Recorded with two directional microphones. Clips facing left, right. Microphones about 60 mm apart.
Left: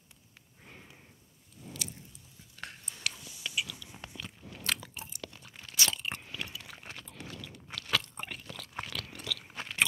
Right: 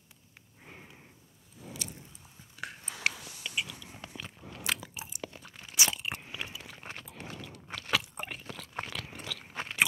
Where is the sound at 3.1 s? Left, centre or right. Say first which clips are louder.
Right 4 dB; right.